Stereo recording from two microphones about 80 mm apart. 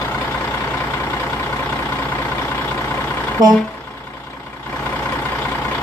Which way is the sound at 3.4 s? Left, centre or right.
Right.